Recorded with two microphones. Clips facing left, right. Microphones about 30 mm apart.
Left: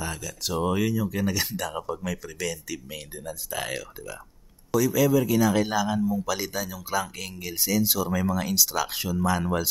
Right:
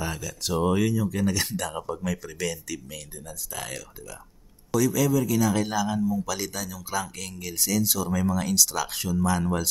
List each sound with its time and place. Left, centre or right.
0.0 s speech: centre
2.7 s speech: centre
4.6 s a man's voice: centre